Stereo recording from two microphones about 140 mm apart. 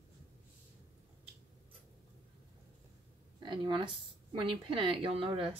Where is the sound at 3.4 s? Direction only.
35° right (ahead or behind).